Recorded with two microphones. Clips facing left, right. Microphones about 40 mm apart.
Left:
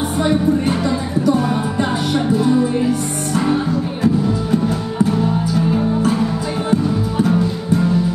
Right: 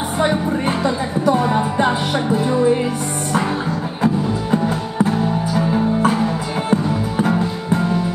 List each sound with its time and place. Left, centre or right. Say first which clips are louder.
0.2 s music: left 2 dB; right
4.0 s music: left 1 dB; right